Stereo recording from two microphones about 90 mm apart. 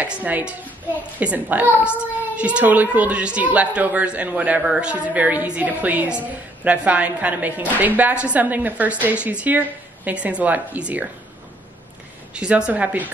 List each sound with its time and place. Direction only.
0.0 s a child's voice: 20° right (ahead or behind)
12.4 s a child's voice: 10° right (ahead or behind)